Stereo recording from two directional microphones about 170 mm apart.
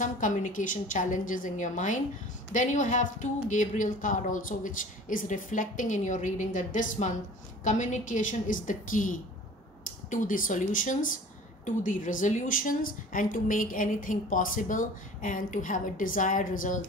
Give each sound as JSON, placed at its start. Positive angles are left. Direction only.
{"t": 0.0, "sound": "a woman's voice", "side_deg": 50}